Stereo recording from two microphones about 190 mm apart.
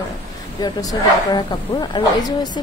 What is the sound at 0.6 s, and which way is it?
Speech, 20° left (ahead or behind).